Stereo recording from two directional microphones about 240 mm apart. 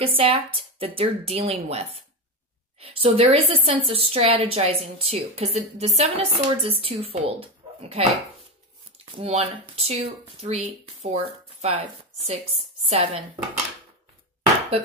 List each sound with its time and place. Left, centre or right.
0.0 s a woman's voice: right